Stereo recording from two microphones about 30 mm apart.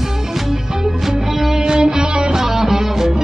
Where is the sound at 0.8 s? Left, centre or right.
Centre.